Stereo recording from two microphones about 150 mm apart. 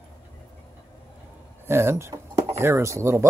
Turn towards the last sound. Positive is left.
turn(degrees=-20)  # may be behind; listen again after turning